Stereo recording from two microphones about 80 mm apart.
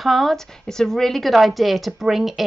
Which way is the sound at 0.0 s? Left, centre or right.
Centre.